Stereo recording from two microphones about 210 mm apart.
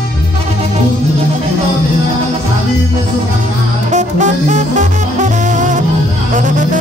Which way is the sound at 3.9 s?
35° right (ahead or behind).